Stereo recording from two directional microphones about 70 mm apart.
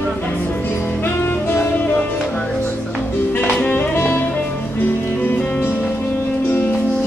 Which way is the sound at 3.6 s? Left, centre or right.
Left.